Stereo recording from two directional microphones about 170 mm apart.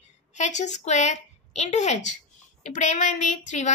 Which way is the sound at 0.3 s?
45° left (ahead or behind).